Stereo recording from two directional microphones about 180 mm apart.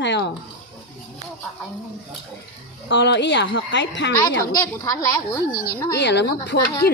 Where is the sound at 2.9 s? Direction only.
80° left.